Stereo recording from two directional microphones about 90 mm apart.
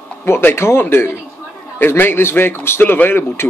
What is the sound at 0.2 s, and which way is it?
Speech, 25° left (ahead or behind).